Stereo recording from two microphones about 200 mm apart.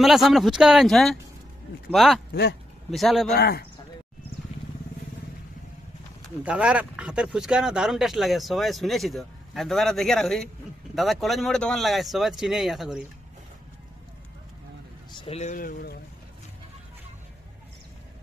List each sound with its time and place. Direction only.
0.0 s speech: centre (ahead or behind)
3.3 s speech: 50° left (ahead or behind)
6.4 s speech: 5° right (ahead or behind)
15.1 s speech: 30° left (ahead or behind); by 16.0 s 45° left (ahead or behind)